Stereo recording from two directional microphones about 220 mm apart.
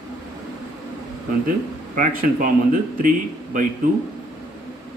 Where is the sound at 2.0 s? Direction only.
40° right (ahead or behind).